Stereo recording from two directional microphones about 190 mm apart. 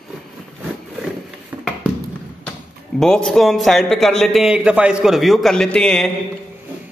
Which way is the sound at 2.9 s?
5° left (ahead or behind).